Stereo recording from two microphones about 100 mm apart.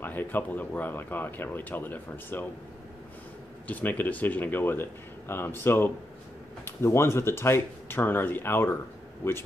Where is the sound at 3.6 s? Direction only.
15° left (ahead or behind).